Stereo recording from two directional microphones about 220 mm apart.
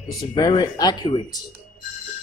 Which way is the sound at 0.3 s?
20° left (ahead or behind).